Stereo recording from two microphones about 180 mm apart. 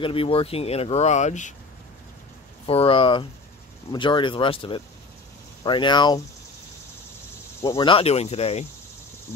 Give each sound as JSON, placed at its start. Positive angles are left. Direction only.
{"t": 0.0, "sound": "speech", "side_deg": 30}
{"t": 2.6, "sound": "speech", "side_deg": 30}
{"t": 7.7, "sound": "speech", "side_deg": 30}